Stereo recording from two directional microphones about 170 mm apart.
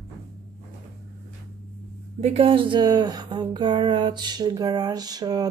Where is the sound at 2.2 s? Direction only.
35° right (ahead or behind).